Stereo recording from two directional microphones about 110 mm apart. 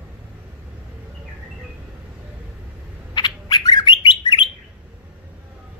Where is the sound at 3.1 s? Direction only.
40° left (ahead or behind).